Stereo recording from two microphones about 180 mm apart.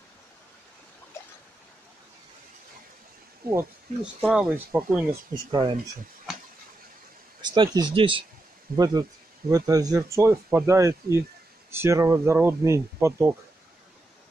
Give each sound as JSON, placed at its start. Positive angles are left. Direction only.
{"t": 3.4, "sound": "speech", "side_deg": -10}
{"t": 5.3, "sound": "speech", "side_deg": -25}
{"t": 6.3, "sound": "a sound", "side_deg": 0}
{"t": 7.4, "sound": "speech", "side_deg": -25}